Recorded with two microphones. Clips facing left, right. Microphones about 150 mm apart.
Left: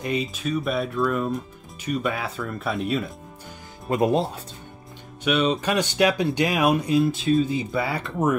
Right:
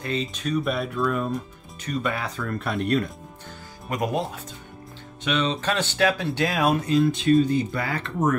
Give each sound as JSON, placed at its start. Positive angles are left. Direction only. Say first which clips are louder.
{"t": 0.0, "sound": "speech", "louder": "left 2 dB", "side_deg": 10}
{"t": 3.9, "sound": "speech", "louder": "left 5 dB", "side_deg": 30}
{"t": 5.2, "sound": "speech", "louder": "left 3 dB", "side_deg": 10}